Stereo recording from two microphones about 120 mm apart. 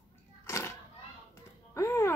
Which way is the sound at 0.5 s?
25° left (ahead or behind).